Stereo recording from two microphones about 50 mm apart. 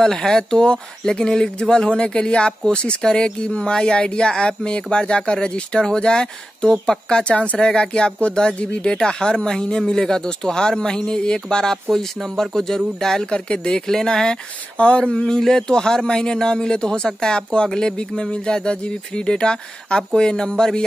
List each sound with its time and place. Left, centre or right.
0.0 s speech: centre